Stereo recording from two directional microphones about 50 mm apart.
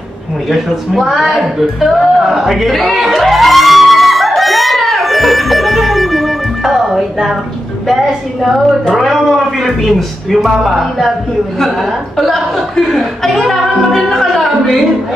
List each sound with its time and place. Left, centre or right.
0.5 s a woman's voice: centre